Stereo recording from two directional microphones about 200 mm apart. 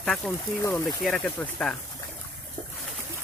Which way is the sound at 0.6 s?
15° left (ahead or behind).